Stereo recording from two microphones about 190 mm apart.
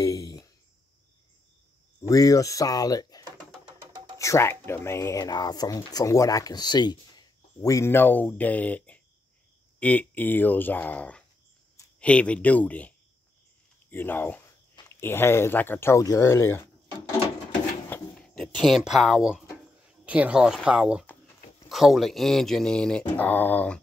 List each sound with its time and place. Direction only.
0.0 s a sound: 20° left (ahead or behind)
2.0 s speech: 20° left (ahead or behind)
3.9 s music: 20° right (ahead or behind)
4.2 s speech: 15° left (ahead or behind)
17.8 s drawer open or close: 10° left (ahead or behind)
20.1 s a man's voice: 5° right (ahead or behind)